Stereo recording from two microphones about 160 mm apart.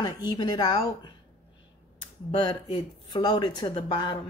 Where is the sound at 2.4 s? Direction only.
30° left (ahead or behind).